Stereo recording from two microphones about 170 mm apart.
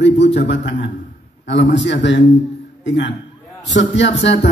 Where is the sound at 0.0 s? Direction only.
90° left.